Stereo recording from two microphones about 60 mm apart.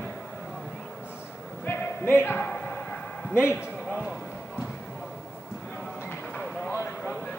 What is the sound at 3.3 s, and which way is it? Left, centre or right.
Speech, left.